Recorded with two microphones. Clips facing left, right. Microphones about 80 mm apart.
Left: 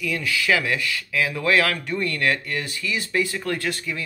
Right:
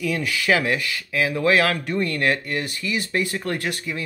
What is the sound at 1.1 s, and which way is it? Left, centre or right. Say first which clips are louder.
Speech: right 2 dB; right.